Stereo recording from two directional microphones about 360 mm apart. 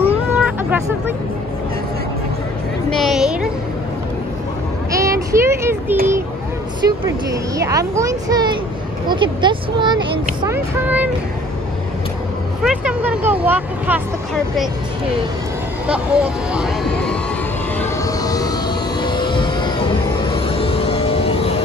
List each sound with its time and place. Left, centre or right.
0.3 s music: centre
2.9 s a sound: centre
4.9 s child singing: centre
6.8 s speech: centre
12.6 s speech: centre
15.9 s speech: centre
17.7 s music: centre
20.2 s vehicle: centre